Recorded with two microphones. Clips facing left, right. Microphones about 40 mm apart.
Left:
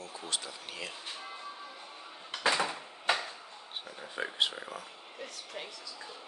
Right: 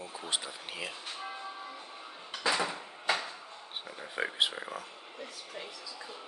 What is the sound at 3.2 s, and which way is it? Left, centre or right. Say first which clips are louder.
Speech: even; centre.